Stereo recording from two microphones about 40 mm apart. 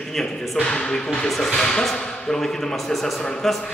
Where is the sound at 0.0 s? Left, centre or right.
Centre.